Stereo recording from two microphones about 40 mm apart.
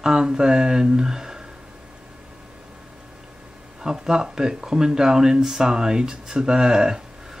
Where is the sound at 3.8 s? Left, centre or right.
Centre.